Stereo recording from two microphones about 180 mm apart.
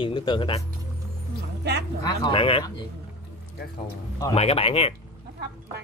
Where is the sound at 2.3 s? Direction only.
30° left (ahead or behind).